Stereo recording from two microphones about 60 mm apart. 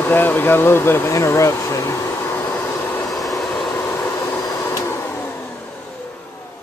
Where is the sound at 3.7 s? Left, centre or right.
Left.